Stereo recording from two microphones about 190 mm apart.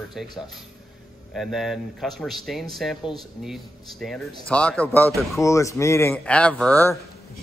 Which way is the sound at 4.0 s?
5° left (ahead or behind).